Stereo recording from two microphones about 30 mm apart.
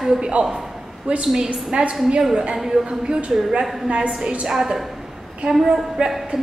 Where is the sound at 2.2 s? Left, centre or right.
Centre.